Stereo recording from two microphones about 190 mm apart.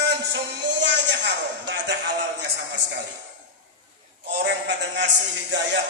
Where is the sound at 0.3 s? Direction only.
70° right (ahead or behind).